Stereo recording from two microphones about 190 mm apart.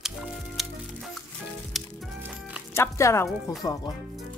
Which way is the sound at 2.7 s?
15° left (ahead or behind).